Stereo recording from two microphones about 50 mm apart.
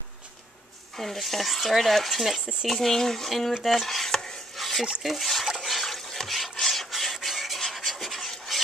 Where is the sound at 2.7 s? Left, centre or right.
Centre.